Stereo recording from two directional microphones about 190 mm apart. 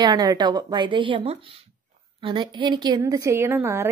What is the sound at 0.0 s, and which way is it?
A woman's voice, 20° right (ahead or behind).